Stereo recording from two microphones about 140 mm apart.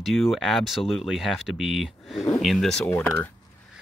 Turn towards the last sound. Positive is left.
turn(degrees=20)  # may be behind; listen again after turning